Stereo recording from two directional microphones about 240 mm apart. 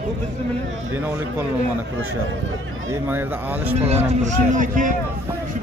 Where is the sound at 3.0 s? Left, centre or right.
Centre.